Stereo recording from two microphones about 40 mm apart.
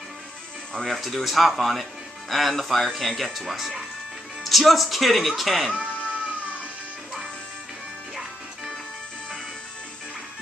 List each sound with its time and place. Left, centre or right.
0.7 s speech: centre
3.3 s speech: centre
5.7 s music: right